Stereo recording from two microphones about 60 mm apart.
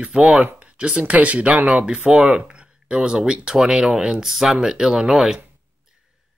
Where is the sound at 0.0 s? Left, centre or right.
Centre.